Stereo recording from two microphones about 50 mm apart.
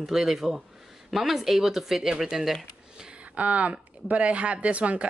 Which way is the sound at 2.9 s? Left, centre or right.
Centre.